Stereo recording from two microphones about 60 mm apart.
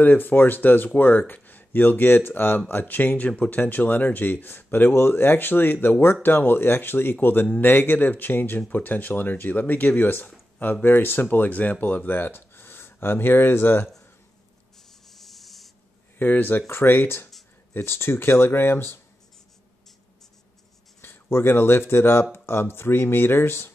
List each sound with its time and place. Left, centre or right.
0.0 s speech: left
15.0 s rub: centre
16.2 s speech: left
21.0 s speech: left